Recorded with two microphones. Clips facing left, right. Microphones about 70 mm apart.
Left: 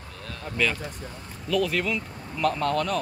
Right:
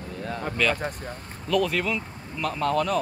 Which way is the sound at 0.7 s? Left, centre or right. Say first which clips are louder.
Right 5 dB; right.